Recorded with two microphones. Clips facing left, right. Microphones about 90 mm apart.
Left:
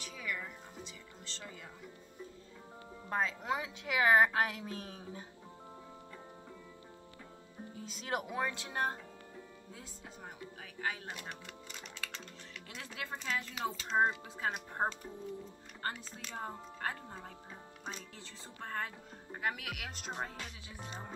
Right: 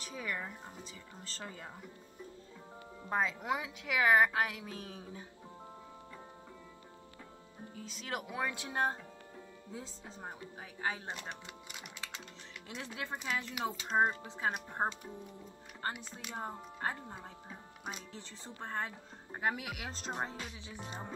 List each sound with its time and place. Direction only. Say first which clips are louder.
0.0 s music: right 2 dB; 30° right (ahead or behind)
1.2 s speech: right 3 dB; 35° right (ahead or behind)
3.1 s speech: right 1 dB; 10° right (ahead or behind)
3.6 s speech: left 1 dB; 15° left (ahead or behind)
4.3 s a woman's voice: left 1 dB; 5° right (ahead or behind)
7.8 s speech: left 3 dB; 35° left (ahead or behind)
8.3 s speech: left 1 dB; 10° right (ahead or behind)
9.8 s speech: right 5 dB; 25° right (ahead or behind)